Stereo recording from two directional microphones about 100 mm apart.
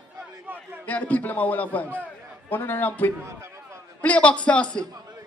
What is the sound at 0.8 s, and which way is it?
A man's voice, 15° left (ahead or behind).